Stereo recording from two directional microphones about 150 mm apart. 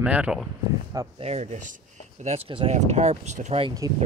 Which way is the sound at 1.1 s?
45° right (ahead or behind).